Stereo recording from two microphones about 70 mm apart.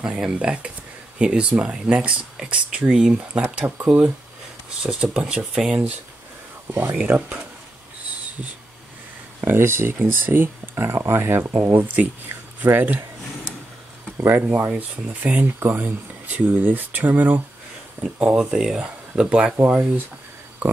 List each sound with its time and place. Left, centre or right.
0.2 s speech: centre
3.6 s speech: right
4.8 s speech: centre
9.4 s speech: right
14.1 s speech: right